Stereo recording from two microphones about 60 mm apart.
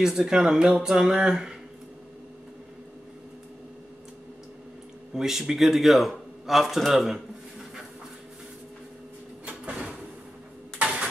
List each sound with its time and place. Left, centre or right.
0.0 s speech: centre
5.1 s speech: centre
9.5 s a sound: right